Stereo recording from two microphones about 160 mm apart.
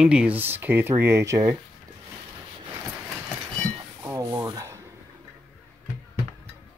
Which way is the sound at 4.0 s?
20° right (ahead or behind).